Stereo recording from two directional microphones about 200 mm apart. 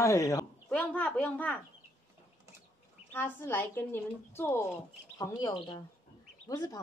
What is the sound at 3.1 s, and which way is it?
Speech, 10° left (ahead or behind).